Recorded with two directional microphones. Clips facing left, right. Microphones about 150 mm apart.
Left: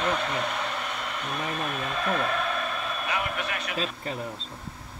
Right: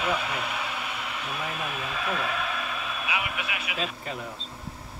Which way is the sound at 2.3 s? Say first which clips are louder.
Left 3 dB; 5° right (ahead or behind).